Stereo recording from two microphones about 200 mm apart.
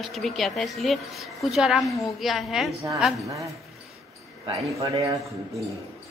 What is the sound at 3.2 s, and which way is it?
A man's voice, 15° right (ahead or behind).